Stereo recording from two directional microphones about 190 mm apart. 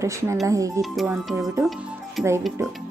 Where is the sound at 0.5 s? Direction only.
15° right (ahead or behind).